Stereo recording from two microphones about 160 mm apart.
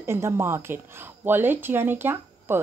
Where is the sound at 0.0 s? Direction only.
15° right (ahead or behind).